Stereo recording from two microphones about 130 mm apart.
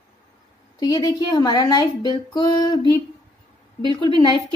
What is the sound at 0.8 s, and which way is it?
Speech, 30° left (ahead or behind).